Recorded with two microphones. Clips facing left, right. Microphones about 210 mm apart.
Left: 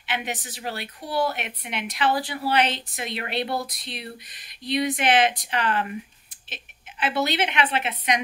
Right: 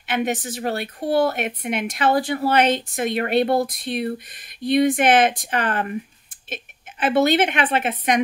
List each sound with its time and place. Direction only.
0.0 s a woman's voice: 50° right (ahead or behind)